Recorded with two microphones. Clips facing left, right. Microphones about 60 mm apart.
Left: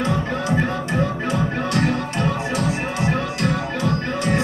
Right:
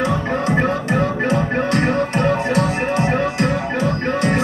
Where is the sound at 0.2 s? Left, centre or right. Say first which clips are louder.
Right 3 dB; right.